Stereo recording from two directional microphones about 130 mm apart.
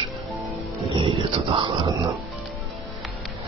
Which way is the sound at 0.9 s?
45° right (ahead or behind).